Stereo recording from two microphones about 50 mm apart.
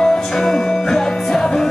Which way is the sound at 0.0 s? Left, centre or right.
Centre.